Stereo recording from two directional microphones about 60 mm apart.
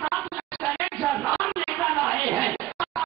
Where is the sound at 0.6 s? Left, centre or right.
Centre.